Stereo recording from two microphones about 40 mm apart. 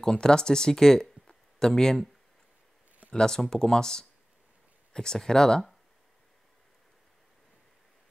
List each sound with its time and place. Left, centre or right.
0.0 s speech: centre
3.1 s speech: centre